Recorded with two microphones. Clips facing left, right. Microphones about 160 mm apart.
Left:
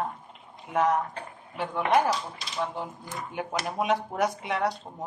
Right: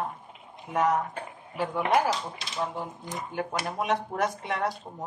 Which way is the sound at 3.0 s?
20° right (ahead or behind).